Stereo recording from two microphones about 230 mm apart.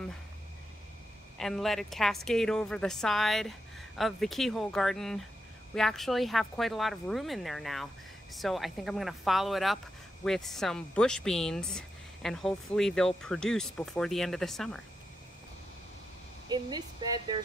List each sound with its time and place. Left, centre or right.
1.4 s speech: centre
16.4 s speech: centre